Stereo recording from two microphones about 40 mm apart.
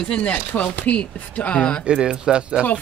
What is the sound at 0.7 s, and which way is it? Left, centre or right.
Speech, left.